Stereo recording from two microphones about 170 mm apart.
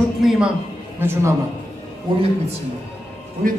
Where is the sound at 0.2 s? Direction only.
Centre (ahead or behind).